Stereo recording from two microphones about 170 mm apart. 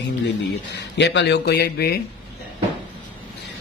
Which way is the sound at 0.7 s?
90° left.